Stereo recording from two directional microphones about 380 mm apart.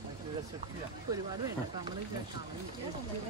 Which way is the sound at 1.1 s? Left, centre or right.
Centre.